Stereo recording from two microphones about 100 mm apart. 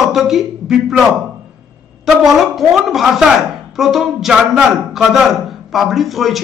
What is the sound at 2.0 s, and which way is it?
Speech, centre (ahead or behind).